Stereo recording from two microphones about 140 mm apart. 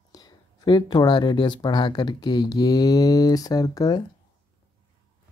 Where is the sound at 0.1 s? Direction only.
30° left (ahead or behind).